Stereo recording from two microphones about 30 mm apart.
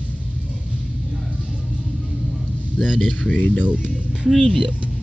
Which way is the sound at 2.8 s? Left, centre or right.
Centre.